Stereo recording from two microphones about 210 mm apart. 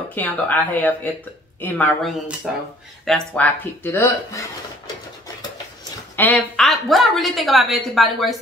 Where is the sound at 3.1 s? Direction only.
10° left (ahead or behind).